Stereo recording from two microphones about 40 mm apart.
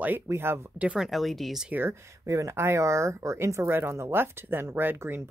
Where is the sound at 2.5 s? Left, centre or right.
Right.